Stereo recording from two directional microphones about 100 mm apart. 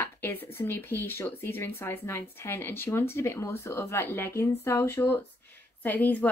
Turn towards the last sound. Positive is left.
turn(degrees=15)  # may be behind; listen again after turning